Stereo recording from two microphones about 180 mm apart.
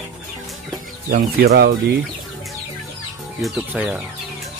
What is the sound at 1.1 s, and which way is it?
Speech, 60° right (ahead or behind).